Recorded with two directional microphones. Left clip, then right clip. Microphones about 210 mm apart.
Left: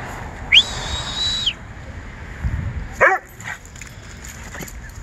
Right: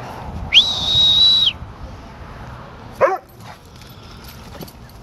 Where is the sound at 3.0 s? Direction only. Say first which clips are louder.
Left 2 dB; 5° left (ahead or behind).